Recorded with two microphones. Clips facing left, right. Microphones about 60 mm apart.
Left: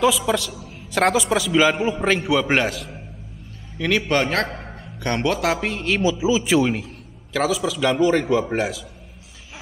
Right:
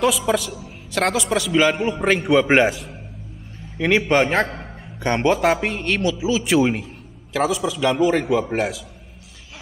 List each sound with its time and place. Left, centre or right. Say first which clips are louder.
0.0 s a man's voice: even; centre
0.9 s a man's voice: left 2 dB; centre
2.3 s a man's voice: right 4 dB; centre
6.1 s speech: left 2 dB; centre
6.6 s a man's voice: right 2 dB; centre